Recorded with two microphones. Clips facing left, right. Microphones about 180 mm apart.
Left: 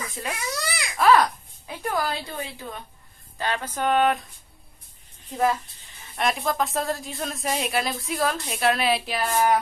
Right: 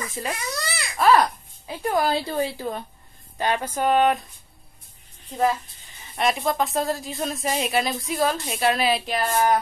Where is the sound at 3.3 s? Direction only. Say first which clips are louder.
Right 4 dB; 15° right (ahead or behind).